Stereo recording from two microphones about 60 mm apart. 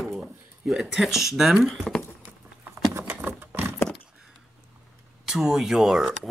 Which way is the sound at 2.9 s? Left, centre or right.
Right.